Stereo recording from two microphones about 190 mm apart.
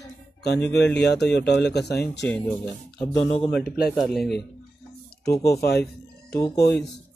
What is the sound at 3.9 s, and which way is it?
Speech, centre (ahead or behind).